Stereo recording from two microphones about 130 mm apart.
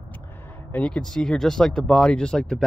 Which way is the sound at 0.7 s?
10° left (ahead or behind).